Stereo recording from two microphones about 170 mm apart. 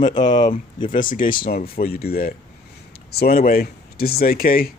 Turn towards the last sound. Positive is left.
turn(degrees=60)  # may be behind; listen again after turning